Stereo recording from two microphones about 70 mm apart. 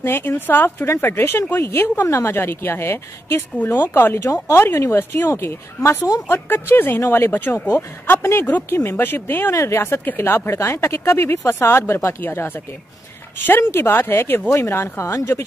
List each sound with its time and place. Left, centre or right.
0.0 s speech: left
4.2 s speech: left
4.6 s speech: left
9.5 s speech: left
9.8 s speech: left
13.6 s speech: left
13.8 s speech: left